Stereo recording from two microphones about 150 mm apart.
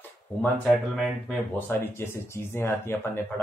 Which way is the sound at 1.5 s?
15° left (ahead or behind).